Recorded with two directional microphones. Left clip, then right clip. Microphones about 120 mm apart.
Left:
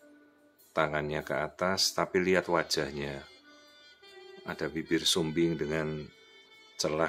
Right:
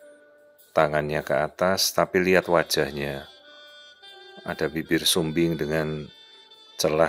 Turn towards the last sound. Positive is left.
turn(degrees=-45)  # may be behind; listen again after turning